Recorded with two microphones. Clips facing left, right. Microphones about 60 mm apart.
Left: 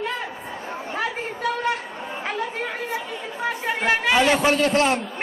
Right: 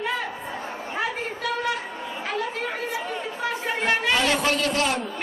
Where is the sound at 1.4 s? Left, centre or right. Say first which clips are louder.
Left 3 dB; left.